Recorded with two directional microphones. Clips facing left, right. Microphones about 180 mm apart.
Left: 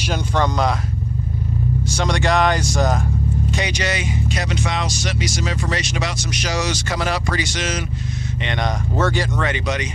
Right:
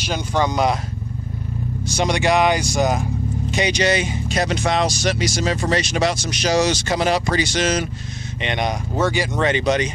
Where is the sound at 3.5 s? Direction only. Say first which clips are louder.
Right 10 dB; 20° right (ahead or behind).